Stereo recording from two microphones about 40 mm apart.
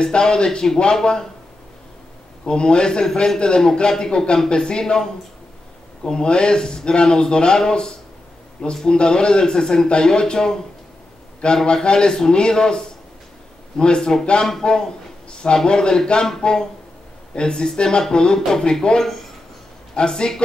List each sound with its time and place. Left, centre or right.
0.0 s speech: left
2.4 s speech: left